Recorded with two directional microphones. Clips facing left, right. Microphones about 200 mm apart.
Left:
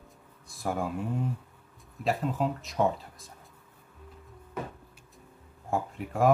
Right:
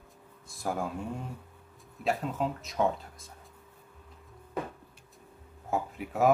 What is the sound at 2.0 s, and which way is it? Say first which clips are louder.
Speech: left 2 dB; centre (ahead or behind).